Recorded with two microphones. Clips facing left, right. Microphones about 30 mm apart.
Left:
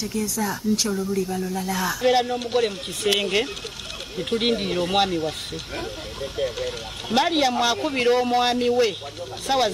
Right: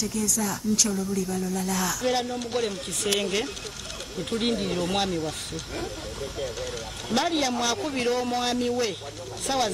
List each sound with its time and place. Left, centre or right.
0.0 s speech: left
6.3 s speech: left